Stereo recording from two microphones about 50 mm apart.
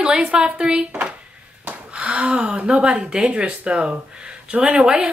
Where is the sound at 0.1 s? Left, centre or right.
Centre.